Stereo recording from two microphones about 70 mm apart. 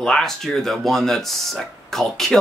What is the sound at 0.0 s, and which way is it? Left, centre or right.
Speech, centre.